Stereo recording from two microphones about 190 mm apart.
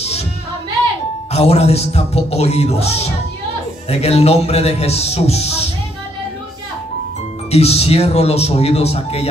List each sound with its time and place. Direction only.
1.3 s a man's voice: 35° left (ahead or behind)
7.5 s a man's voice: 35° left (ahead or behind)